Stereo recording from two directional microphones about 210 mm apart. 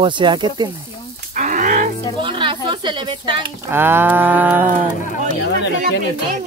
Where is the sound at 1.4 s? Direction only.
35° right (ahead or behind).